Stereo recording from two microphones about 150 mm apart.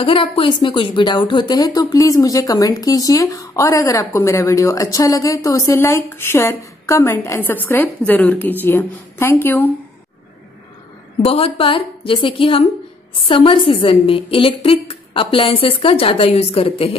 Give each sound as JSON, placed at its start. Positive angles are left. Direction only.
{"t": 0.0, "sound": "a woman's voice", "side_deg": 35}
{"t": 11.2, "sound": "a woman's voice", "side_deg": 40}